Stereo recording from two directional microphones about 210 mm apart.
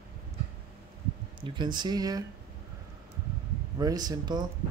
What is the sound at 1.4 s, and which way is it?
Speech, 20° right (ahead or behind).